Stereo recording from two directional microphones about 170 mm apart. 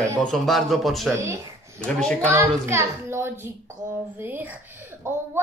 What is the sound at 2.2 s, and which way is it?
A child's voice, 15° right (ahead or behind).